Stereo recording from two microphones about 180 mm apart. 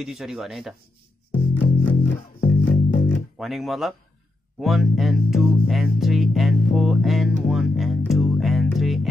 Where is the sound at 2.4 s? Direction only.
50° left (ahead or behind).